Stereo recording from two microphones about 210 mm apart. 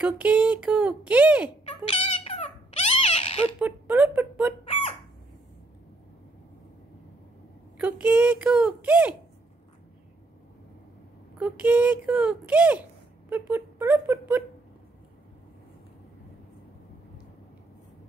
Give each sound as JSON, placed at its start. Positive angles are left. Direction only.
{"t": 0.0, "sound": "speech", "side_deg": -5}
{"t": 1.7, "sound": "cat", "side_deg": 25}
{"t": 3.5, "sound": "a sound", "side_deg": -5}
{"t": 7.8, "sound": "speech", "side_deg": -10}
{"t": 11.3, "sound": "speech", "side_deg": -5}